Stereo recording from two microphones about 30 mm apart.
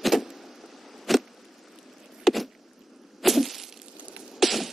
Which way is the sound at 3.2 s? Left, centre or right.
Centre.